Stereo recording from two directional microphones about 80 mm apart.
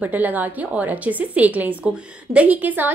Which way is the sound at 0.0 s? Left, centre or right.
Right.